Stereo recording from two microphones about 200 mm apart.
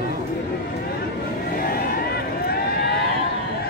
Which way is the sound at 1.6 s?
50° left (ahead or behind).